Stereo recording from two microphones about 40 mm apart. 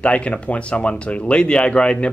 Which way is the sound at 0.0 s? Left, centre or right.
Left.